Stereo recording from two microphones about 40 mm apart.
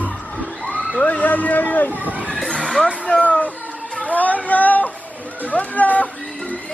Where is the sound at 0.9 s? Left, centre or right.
Left.